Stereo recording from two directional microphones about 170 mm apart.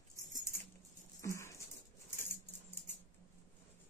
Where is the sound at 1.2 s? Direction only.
15° left (ahead or behind).